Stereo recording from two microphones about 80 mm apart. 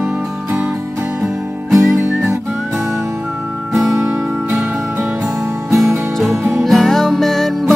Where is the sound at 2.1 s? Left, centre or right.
Right.